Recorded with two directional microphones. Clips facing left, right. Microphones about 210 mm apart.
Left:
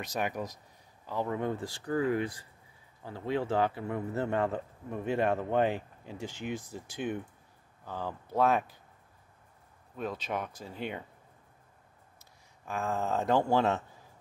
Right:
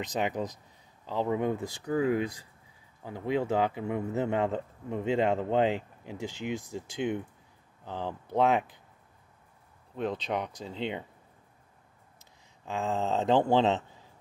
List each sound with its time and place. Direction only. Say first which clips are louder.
0.0 s speech: right 3 dB; 20° right (ahead or behind)
10.0 s speech: right 3 dB; 20° right (ahead or behind)
12.6 s speech: right 2 dB; 20° right (ahead or behind)